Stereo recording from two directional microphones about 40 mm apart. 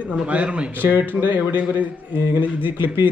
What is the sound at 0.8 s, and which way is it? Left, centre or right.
Speech, right.